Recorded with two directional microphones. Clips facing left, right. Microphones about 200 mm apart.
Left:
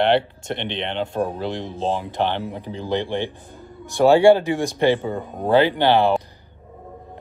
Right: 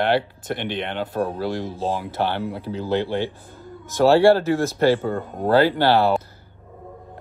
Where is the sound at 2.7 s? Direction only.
5° right (ahead or behind).